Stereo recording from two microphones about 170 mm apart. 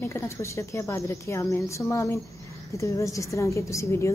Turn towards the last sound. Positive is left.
turn(degrees=15)  # may be behind; listen again after turning